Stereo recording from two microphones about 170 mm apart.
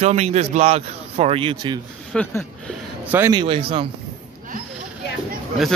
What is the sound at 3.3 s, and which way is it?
Speech, 30° right (ahead or behind).